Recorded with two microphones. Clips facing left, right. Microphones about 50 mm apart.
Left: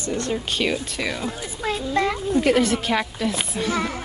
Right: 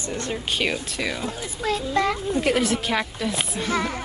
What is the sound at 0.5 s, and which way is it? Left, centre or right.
A woman's voice, centre.